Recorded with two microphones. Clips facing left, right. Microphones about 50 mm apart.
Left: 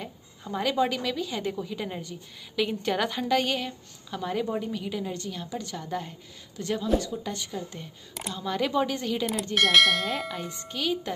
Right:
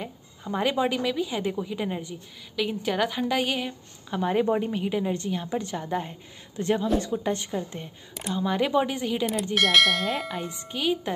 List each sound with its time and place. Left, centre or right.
0.0 s a woman's voice: centre
2.5 s a woman's voice: centre
4.1 s a woman's voice: right
8.3 s a woman's voice: centre
9.2 s bell: centre
10.5 s a woman's voice: centre